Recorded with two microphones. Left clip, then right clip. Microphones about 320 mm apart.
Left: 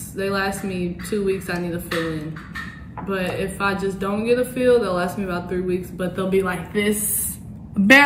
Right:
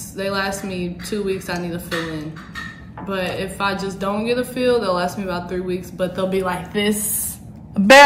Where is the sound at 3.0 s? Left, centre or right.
Centre.